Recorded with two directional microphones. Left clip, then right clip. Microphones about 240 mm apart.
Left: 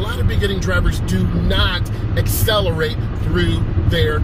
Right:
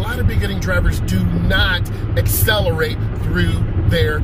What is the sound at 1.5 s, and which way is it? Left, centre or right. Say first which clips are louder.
Speech: right 3 dB; centre.